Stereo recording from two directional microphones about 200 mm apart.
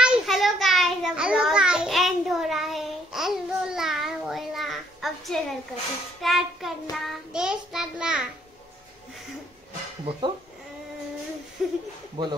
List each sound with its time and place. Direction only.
0.0 s a sound: centre (ahead or behind)
6.2 s child singing: centre (ahead or behind)
11.6 s child singing: centre (ahead or behind)
12.2 s speech: 20° right (ahead or behind)